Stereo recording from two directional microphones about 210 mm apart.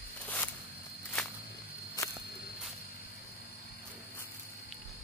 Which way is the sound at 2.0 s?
15° left (ahead or behind).